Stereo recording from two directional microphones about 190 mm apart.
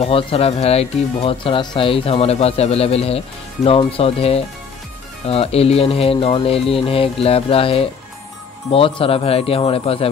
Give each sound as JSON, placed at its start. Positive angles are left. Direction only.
{"t": 0.0, "sound": "speech", "side_deg": 30}